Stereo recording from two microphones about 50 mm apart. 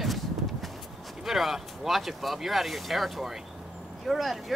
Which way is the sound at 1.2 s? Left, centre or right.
Centre.